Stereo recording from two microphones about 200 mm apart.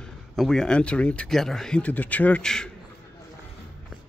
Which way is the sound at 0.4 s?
Centre (ahead or behind).